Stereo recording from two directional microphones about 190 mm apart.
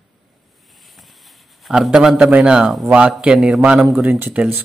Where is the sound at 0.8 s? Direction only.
Centre (ahead or behind).